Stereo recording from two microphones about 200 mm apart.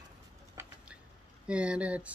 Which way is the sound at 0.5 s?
5° right (ahead or behind).